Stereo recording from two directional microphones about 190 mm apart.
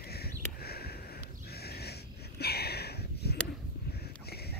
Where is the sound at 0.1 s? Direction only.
55° left (ahead or behind).